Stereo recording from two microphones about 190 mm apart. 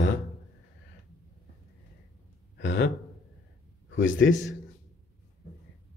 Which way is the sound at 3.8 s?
85° left.